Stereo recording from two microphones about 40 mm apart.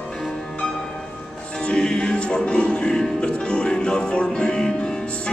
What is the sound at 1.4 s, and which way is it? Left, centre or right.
Music, left.